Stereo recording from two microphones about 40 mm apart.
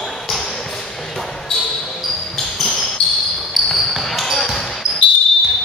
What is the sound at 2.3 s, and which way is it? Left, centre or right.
Basketball bounce, centre.